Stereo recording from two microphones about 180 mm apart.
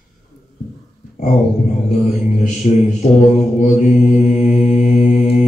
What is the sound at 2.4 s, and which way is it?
Mantra, 40° left (ahead or behind).